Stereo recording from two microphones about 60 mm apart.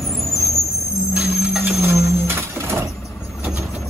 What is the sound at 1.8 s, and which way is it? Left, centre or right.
Vehicle, right.